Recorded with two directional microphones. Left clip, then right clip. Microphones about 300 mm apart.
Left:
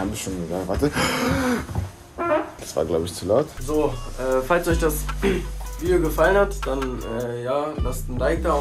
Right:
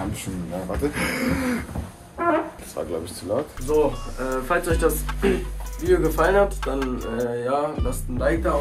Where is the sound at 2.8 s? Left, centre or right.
Left.